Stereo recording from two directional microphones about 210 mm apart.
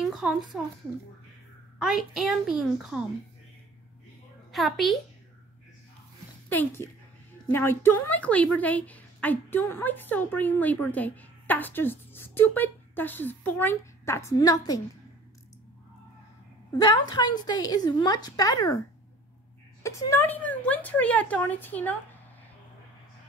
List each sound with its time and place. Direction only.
0.0 s a sound: 5° right (ahead or behind)
1.8 s a child's voice: centre (ahead or behind)
4.5 s a woman's voice: centre (ahead or behind)
6.5 s a woman's voice: 10° left (ahead or behind)
16.7 s a woman's voice: 20° left (ahead or behind)
19.8 s a woman's voice: 15° left (ahead or behind)